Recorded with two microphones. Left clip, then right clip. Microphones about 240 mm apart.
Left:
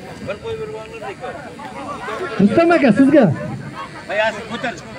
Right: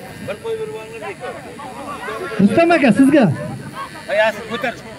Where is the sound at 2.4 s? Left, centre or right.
Right.